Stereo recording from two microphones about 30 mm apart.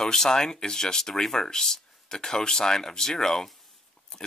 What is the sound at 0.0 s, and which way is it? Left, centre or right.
Speech, centre.